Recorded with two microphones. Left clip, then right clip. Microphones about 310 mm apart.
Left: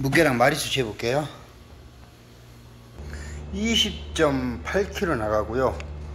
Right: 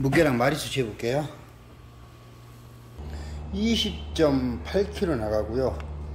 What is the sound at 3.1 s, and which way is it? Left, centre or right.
A man's voice, centre.